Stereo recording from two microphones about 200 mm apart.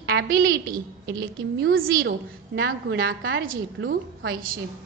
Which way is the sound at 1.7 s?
50° right (ahead or behind).